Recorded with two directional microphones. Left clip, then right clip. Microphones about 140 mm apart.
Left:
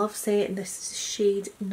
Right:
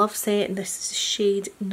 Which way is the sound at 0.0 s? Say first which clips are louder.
Right 3 dB; 30° right (ahead or behind).